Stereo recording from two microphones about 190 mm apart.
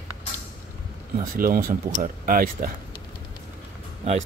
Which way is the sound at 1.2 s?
50° right (ahead or behind).